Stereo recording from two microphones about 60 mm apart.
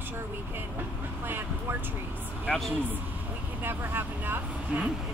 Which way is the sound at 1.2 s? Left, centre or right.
Right.